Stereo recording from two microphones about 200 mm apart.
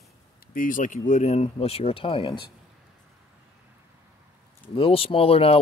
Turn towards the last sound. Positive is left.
turn(degrees=30)  # may be behind; listen again after turning